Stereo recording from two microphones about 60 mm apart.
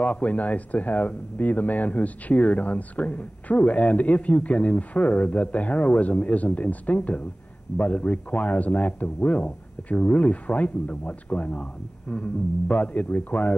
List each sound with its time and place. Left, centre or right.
0.0 s speech: left